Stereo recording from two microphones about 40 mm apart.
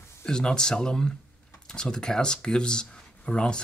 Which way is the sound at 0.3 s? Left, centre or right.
Left.